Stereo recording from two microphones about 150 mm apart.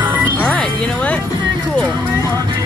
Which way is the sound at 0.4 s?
10° left (ahead or behind).